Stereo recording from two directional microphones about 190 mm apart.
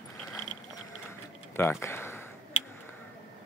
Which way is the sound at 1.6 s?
15° left (ahead or behind).